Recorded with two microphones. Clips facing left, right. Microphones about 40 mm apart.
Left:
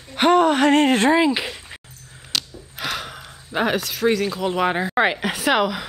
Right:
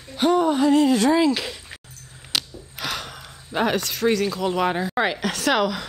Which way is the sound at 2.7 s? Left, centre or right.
Centre.